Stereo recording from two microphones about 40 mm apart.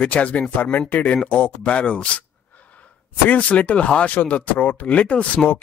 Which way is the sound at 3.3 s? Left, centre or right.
Left.